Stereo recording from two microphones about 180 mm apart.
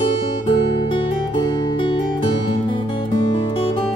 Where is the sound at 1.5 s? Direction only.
25° left (ahead or behind).